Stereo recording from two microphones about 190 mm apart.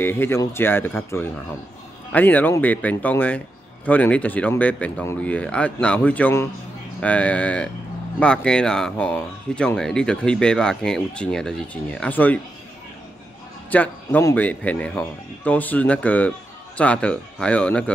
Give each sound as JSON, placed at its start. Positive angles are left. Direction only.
{"t": 0.0, "sound": "speech", "side_deg": 10}
{"t": 13.7, "sound": "speech", "side_deg": 10}